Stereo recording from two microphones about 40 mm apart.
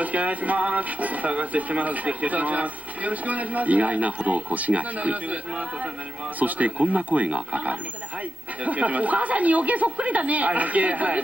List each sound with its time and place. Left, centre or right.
0.0 s speech: right